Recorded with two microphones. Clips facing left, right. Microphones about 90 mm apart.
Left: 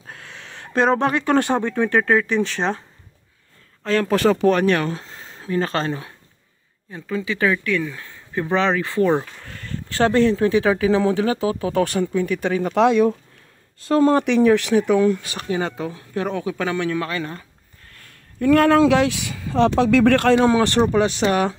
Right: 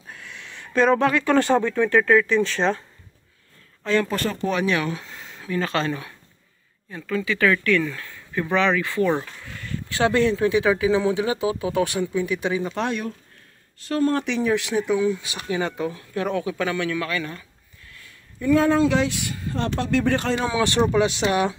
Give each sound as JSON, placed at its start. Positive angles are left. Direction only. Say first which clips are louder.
{"t": 0.3, "sound": "a sound", "louder": "left 1 dB", "side_deg": 35}
{"t": 1.0, "sound": "speech", "louder": "even", "side_deg": 40}
{"t": 1.3, "sound": "speech", "louder": "even", "side_deg": 25}
{"t": 3.8, "sound": "speech", "louder": "left 1 dB", "side_deg": 40}
{"t": 4.1, "sound": "speech", "louder": "left 9 dB", "side_deg": 90}
{"t": 4.5, "sound": "speech", "louder": "left 5 dB", "side_deg": 50}
{"t": 7.6, "sound": "speech", "louder": "right 2 dB", "side_deg": 10}
{"t": 8.0, "sound": "speech", "louder": "left 2 dB", "side_deg": 25}
{"t": 9.4, "sound": "speech", "louder": "even", "side_deg": 45}
{"t": 14.0, "sound": "speech", "louder": "left 6 dB", "side_deg": 65}
{"t": 20.4, "sound": "speech", "louder": "left 4 dB", "side_deg": 45}